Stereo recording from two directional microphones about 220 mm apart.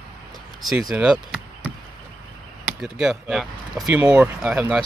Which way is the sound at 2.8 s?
Centre (ahead or behind).